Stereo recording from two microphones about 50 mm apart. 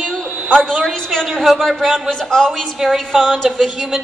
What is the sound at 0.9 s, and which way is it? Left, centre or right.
A woman's voice, centre.